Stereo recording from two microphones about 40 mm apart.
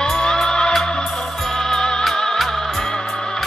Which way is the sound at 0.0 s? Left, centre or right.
Centre.